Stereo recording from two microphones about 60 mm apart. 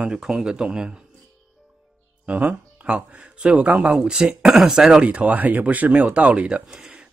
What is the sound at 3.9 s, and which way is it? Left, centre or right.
Speech, centre.